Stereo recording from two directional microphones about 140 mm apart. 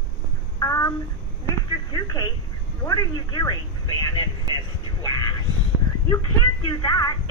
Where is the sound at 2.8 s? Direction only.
25° left (ahead or behind).